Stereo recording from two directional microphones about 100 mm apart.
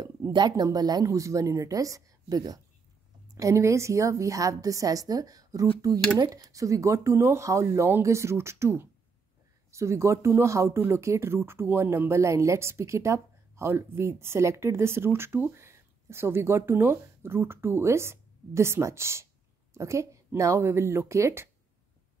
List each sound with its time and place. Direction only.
0.3 s speech: 45° right (ahead or behind); by 21.5 s 25° right (ahead or behind)